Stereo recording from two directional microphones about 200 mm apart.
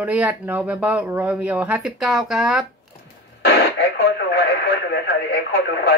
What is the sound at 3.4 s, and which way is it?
Speech, 55° left (ahead or behind).